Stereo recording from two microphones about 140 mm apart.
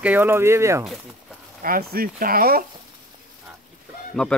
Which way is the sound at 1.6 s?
90° right.